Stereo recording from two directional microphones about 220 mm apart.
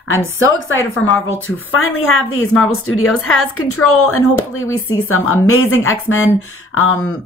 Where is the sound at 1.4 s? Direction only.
65° left (ahead or behind).